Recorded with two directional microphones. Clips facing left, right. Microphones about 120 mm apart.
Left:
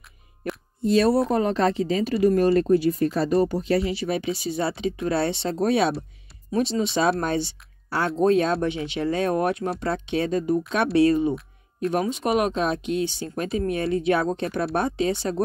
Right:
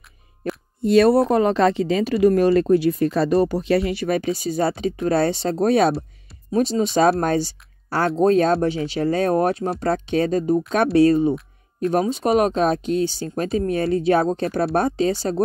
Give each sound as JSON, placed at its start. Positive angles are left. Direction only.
{"t": 0.8, "sound": "speech", "side_deg": -65}